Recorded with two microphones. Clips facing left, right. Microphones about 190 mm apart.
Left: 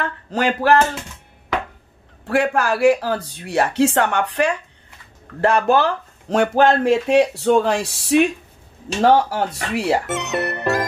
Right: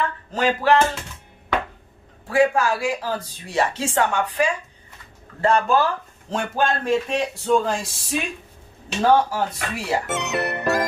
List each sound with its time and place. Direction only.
0.3 s a sound: 65° left (ahead or behind)
2.2 s speech: 70° left (ahead or behind)
10.0 s music: centre (ahead or behind)